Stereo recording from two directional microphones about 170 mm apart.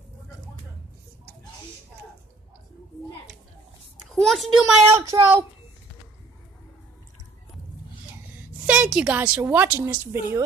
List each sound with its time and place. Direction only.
4.1 s a child's voice: centre (ahead or behind)
4.9 s a woman's voice: 20° right (ahead or behind)
8.6 s a woman's voice: 5° right (ahead or behind)